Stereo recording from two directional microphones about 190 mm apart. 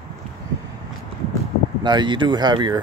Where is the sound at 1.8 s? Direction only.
25° right (ahead or behind).